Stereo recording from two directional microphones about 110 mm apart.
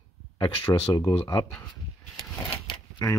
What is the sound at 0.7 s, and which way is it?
Speech, 25° left (ahead or behind).